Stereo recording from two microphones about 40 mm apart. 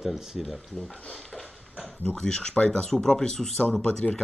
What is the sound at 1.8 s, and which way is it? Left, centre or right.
Speech, left.